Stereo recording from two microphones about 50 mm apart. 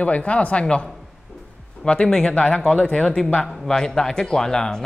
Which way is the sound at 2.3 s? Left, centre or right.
Left.